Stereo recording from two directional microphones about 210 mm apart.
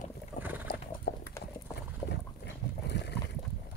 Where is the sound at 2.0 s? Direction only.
55° left (ahead or behind).